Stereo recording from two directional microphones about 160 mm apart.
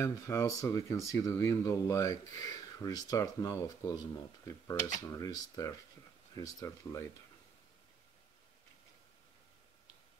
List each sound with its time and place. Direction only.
0.0 s speech: 20° left (ahead or behind)